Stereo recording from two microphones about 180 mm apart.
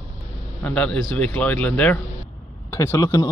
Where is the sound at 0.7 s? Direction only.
5° left (ahead or behind).